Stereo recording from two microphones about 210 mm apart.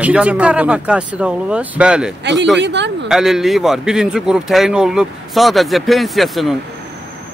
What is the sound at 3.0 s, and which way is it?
Speech, centre (ahead or behind).